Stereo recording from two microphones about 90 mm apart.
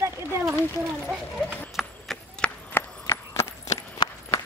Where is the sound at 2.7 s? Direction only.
35° left (ahead or behind).